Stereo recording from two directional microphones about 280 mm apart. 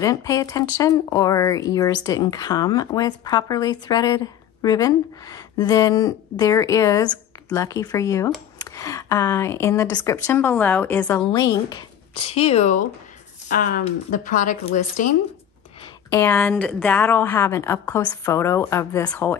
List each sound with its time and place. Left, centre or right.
0.0 s speech: centre
16.1 s speech: centre